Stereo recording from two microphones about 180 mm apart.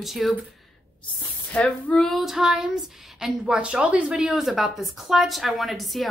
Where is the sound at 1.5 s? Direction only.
5° left (ahead or behind).